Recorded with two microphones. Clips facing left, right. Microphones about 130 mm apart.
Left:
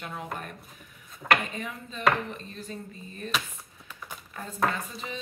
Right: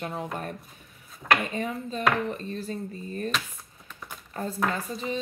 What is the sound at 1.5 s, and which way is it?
A woman's voice, 35° right (ahead or behind).